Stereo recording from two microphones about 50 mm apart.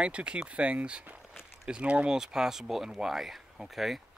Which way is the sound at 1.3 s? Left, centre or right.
Centre.